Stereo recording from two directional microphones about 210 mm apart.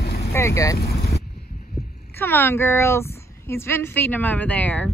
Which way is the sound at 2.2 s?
10° left (ahead or behind).